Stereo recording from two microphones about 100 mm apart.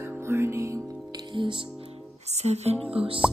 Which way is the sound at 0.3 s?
25° right (ahead or behind).